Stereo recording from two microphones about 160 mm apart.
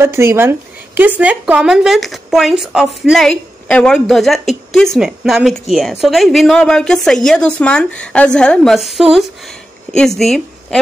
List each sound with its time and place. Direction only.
0.0 s a woman's voice: 15° right (ahead or behind); by 10.8 s centre (ahead or behind)